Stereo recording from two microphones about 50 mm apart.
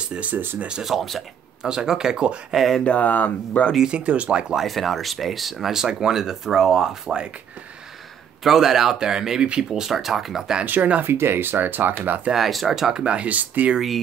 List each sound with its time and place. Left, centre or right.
0.0 s speech: right
0.3 s speech: right
0.8 s speech: centre
1.6 s speech: centre
2.5 s speech: centre
2.8 s speech: left
3.8 s speech: right
4.6 s speech: centre
8.5 s speech: centre
10.6 s speech: right
11.1 s speech: right
12.3 s speech: centre
12.8 s speech: centre
13.7 s speech: centre